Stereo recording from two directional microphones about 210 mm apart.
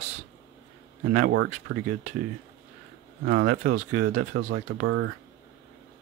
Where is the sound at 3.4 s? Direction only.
40° right (ahead or behind).